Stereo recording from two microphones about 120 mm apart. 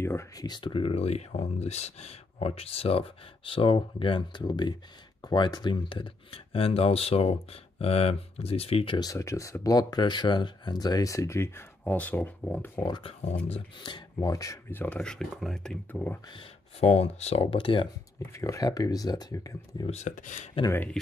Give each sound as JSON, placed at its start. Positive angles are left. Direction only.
{"t": 0.0, "sound": "speech", "side_deg": 20}
{"t": 0.5, "sound": "speech", "side_deg": 40}
{"t": 9.0, "sound": "speech", "side_deg": 25}
{"t": 12.8, "sound": "speech", "side_deg": 40}
{"t": 14.3, "sound": "speech", "side_deg": 25}
{"t": 14.7, "sound": "speech", "side_deg": 15}
{"t": 16.8, "sound": "speech", "side_deg": 65}
{"t": 18.3, "sound": "speech", "side_deg": 25}
{"t": 19.9, "sound": "speech", "side_deg": 80}